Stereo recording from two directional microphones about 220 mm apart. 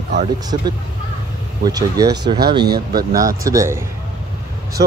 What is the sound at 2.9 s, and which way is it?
Speech, 40° right (ahead or behind).